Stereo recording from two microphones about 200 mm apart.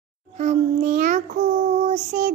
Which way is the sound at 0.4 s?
35° right (ahead or behind).